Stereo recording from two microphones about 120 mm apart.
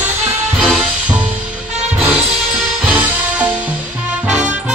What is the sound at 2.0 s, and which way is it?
Music, 15° right (ahead or behind).